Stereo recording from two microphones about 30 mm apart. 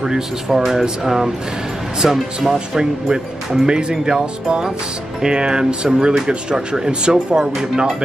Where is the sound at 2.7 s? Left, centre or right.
Right.